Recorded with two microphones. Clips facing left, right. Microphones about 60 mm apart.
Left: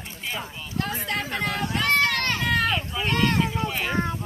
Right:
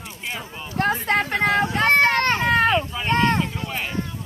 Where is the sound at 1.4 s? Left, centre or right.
Right.